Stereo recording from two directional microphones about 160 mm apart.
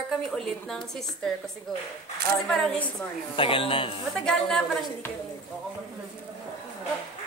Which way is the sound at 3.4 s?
35° left (ahead or behind).